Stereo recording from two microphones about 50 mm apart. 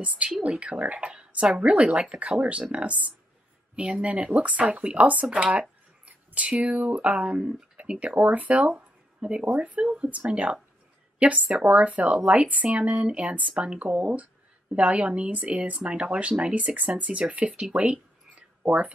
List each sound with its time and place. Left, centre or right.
0.0 s speech: right
6.3 s speech: right
10.2 s speech: right
18.6 s speech: right